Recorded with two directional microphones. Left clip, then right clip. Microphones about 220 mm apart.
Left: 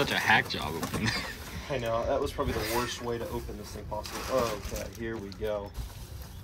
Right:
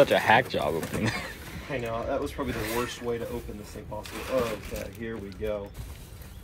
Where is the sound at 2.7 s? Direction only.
10° left (ahead or behind).